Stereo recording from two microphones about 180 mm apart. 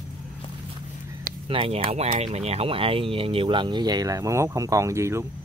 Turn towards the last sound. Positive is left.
turn(degrees=-15)  # may be behind; listen again after turning